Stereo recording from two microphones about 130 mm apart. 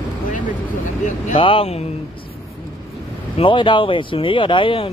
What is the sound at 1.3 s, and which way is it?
Speech, 45° left (ahead or behind).